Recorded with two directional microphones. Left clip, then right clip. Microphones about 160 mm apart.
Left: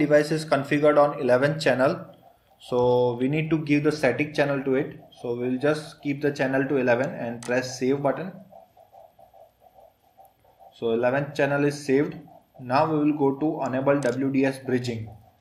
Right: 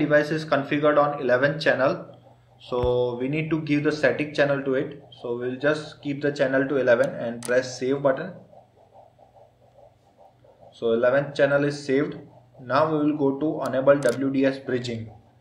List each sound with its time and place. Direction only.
0.0 s speech: 55° left (ahead or behind)
10.8 s speech: 50° left (ahead or behind)